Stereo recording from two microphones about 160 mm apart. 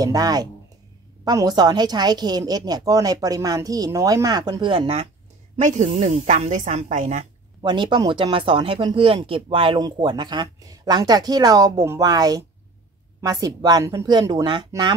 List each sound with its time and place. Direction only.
0.0 s speech: 25° right (ahead or behind)
5.6 s speech: 50° right (ahead or behind)
7.6 s speech: 30° right (ahead or behind)